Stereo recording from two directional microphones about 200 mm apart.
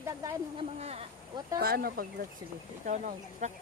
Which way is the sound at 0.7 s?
30° right (ahead or behind).